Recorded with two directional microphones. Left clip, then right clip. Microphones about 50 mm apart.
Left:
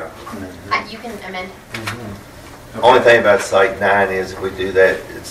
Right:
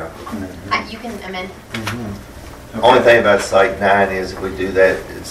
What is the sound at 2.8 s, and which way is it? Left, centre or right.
Speech, centre.